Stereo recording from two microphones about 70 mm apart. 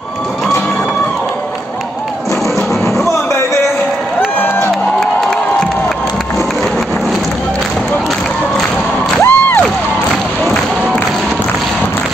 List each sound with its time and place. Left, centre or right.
5.0 s crowd: centre
9.2 s music: left